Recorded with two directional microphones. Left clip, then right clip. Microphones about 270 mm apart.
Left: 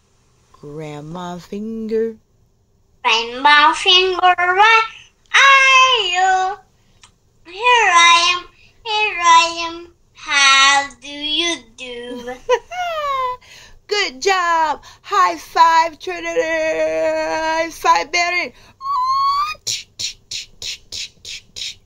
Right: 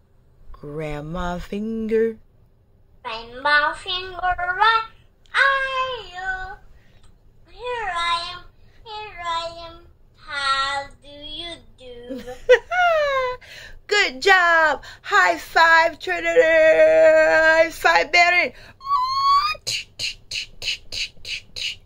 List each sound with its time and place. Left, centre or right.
0.6 s a sound: centre
3.0 s child singing: left
12.4 s a child's voice: centre
20.2 s beatboxing: centre
21.5 s squawk: centre